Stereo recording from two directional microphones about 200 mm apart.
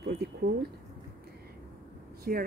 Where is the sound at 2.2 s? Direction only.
45° right (ahead or behind).